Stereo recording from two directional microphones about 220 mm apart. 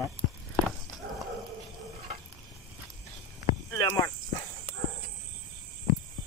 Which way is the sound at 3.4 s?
20° left (ahead or behind).